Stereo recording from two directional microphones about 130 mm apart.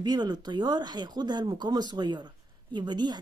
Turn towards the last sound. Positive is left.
turn(degrees=-35)  # may be behind; listen again after turning